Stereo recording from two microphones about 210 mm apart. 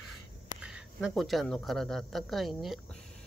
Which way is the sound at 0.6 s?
5° right (ahead or behind).